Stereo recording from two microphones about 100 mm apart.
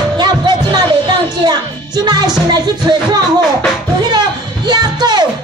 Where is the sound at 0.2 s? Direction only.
45° right (ahead or behind).